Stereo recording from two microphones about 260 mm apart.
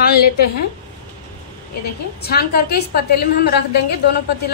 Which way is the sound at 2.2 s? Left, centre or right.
Left.